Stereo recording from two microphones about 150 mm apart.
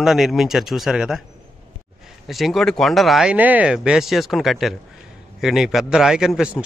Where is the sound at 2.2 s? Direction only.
Centre (ahead or behind).